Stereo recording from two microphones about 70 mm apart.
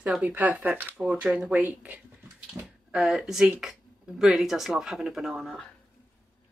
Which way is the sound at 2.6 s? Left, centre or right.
Right.